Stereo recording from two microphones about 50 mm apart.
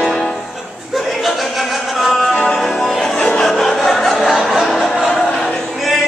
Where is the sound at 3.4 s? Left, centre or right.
Centre.